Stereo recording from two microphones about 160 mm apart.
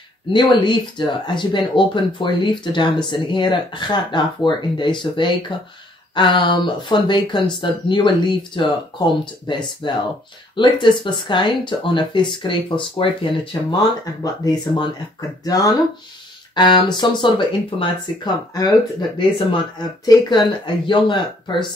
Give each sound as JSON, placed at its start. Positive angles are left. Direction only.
{"t": 0.3, "sound": "speech", "side_deg": 30}